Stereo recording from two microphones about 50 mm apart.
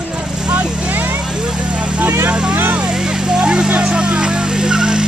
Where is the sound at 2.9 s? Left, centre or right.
Centre.